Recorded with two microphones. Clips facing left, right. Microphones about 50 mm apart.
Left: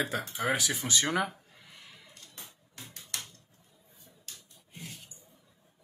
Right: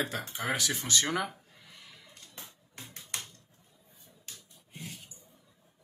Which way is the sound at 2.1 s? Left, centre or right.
Right.